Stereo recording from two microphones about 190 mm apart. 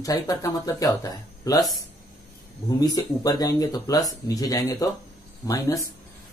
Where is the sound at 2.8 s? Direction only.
20° left (ahead or behind).